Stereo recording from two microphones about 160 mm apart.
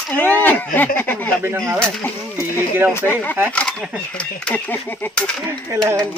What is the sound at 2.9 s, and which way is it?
Speech, 10° left (ahead or behind).